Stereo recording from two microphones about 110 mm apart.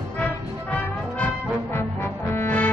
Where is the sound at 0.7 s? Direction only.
15° left (ahead or behind).